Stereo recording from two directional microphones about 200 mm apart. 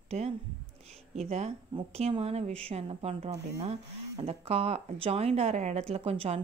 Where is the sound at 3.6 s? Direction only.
30° right (ahead or behind).